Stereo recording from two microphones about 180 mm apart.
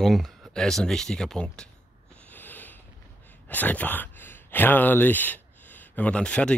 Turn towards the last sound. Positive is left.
turn(degrees=5)  # may be behind; listen again after turning